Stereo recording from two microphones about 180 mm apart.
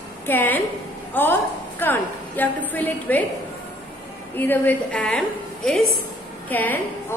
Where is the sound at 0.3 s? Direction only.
10° left (ahead or behind).